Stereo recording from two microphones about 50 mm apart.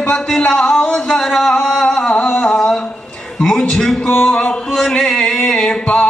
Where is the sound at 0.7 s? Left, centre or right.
Centre.